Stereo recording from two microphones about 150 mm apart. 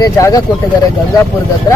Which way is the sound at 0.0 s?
25° left (ahead or behind).